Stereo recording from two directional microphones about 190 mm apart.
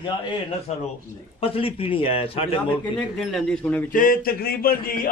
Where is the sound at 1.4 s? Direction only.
30° left (ahead or behind).